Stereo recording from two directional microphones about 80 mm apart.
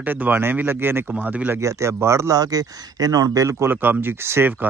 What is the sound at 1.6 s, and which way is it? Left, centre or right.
Speech, right.